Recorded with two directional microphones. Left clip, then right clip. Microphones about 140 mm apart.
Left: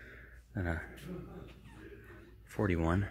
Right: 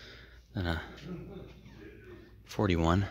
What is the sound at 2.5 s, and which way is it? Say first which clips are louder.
Speech: right 4 dB; 20° right (ahead or behind).